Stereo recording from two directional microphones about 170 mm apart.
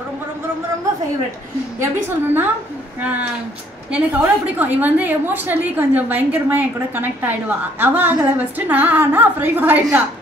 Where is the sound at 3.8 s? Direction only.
10° right (ahead or behind).